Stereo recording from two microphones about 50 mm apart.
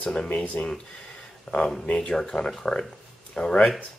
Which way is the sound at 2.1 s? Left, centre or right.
Centre.